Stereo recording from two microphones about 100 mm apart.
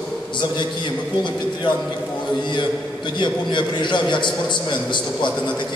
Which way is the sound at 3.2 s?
50° left (ahead or behind).